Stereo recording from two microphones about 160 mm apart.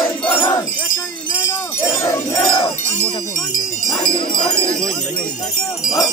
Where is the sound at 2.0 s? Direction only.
30° left (ahead or behind).